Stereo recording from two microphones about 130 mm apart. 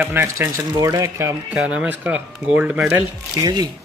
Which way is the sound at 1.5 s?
10° right (ahead or behind).